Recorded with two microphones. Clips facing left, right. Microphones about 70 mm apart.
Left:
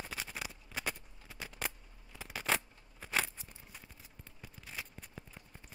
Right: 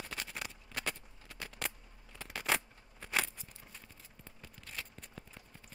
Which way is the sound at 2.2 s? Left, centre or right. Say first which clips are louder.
Even; centre.